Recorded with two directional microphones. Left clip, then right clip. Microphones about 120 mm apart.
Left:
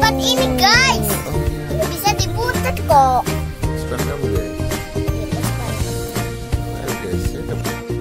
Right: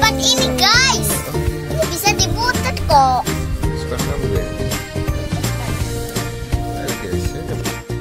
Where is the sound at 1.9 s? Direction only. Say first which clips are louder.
Right 3 dB; 20° left (ahead or behind).